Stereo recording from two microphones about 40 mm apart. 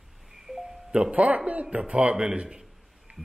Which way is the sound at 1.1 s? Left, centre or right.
Right.